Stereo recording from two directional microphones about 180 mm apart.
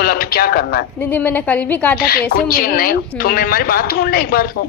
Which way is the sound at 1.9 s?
55° left (ahead or behind).